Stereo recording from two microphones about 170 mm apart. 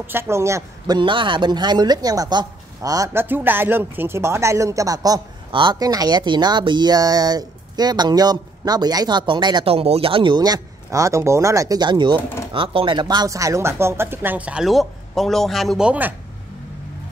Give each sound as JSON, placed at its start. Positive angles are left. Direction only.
{"t": 0.0, "sound": "speech", "side_deg": -15}